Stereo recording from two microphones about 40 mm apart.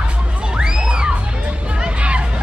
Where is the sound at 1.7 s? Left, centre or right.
Right.